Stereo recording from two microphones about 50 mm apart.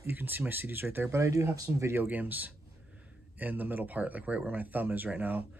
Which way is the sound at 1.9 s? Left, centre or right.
Right.